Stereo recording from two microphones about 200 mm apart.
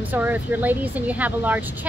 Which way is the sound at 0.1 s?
10° right (ahead or behind).